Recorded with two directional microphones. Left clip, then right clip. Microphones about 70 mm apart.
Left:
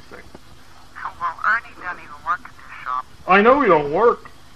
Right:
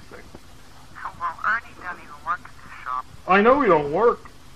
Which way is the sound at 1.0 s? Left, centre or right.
Left.